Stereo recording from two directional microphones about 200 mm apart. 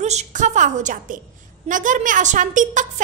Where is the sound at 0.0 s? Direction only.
35° right (ahead or behind).